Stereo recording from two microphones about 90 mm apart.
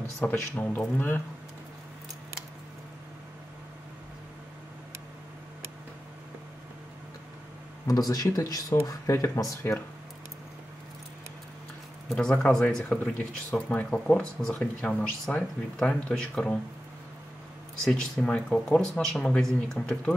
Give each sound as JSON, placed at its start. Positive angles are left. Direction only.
{"t": 0.2, "sound": "speech", "side_deg": 20}
{"t": 7.8, "sound": "speech", "side_deg": 45}
{"t": 12.2, "sound": "speech", "side_deg": 10}
{"t": 17.8, "sound": "speech", "side_deg": 10}